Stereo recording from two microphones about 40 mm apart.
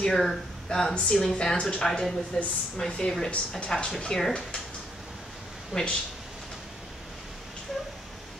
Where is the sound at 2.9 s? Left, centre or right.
Centre.